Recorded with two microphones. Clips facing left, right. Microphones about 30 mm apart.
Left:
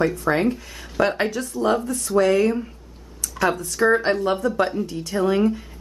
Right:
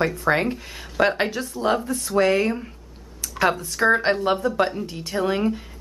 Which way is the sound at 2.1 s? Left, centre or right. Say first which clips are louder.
Left 2 dB; centre.